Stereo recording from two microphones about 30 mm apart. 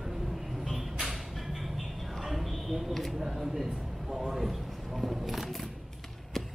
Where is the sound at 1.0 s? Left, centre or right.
Centre.